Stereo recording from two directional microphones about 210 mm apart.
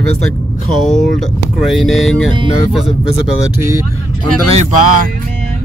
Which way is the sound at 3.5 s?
15° right (ahead or behind).